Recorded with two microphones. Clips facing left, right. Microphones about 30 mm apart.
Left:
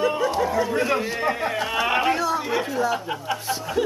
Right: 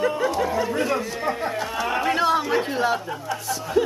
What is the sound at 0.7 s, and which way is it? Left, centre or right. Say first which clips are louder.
Speech: left 1 dB; centre.